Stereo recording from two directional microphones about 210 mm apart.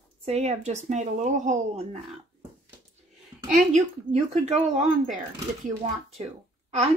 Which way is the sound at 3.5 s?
35° right (ahead or behind).